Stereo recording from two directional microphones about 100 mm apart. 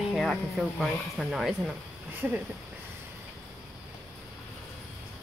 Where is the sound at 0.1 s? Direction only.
Centre (ahead or behind).